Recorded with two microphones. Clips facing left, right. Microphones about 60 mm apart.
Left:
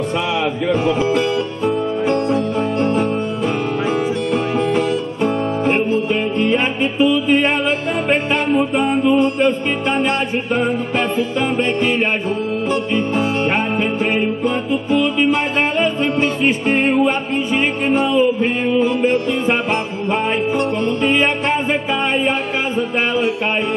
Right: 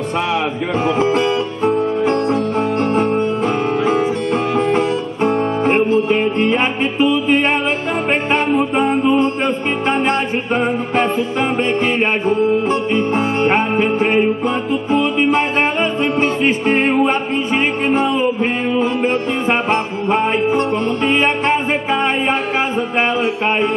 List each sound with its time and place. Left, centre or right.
0.8 s music: right